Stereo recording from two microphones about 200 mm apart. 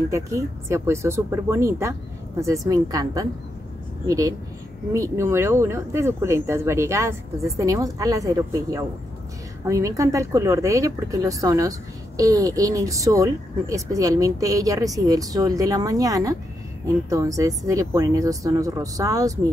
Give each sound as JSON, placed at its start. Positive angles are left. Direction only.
{"t": 0.1, "sound": "speech", "side_deg": -15}